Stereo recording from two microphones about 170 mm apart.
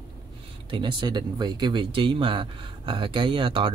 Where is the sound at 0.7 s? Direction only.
30° right (ahead or behind).